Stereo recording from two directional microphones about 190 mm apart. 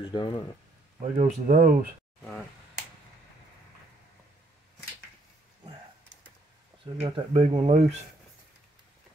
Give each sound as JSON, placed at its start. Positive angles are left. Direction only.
{"t": 0.1, "sound": "speech", "side_deg": 25}
{"t": 1.1, "sound": "speech", "side_deg": -40}
{"t": 7.0, "sound": "speech", "side_deg": -30}